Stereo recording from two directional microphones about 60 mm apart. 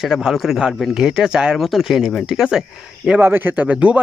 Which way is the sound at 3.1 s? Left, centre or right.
Right.